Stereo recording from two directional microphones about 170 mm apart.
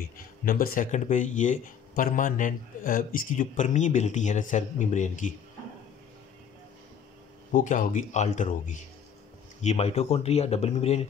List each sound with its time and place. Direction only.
0.5 s speech: 55° left (ahead or behind)
7.5 s speech: 50° left (ahead or behind)